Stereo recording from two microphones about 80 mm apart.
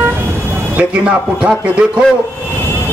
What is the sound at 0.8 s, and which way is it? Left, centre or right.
Speech, centre.